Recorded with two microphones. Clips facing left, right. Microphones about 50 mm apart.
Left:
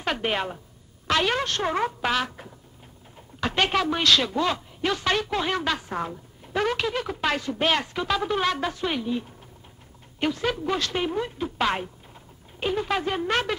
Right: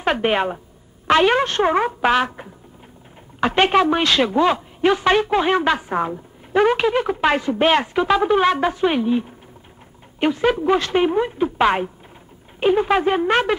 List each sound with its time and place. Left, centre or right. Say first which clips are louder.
0.0 s a woman's voice: right 8 dB; right